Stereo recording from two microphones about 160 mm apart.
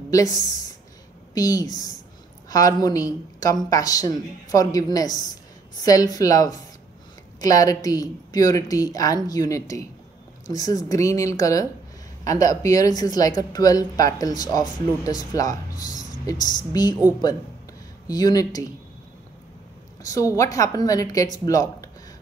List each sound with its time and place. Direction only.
0.1 s speech: 20° left (ahead or behind)
18.0 s speech: 25° left (ahead or behind)
20.0 s a woman's voice: 20° left (ahead or behind)